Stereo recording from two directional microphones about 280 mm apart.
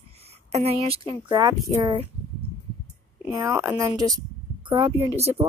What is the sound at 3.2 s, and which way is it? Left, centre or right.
A woman's voice, centre.